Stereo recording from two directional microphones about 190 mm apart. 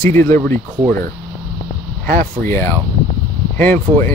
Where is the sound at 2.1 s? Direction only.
45° right (ahead or behind).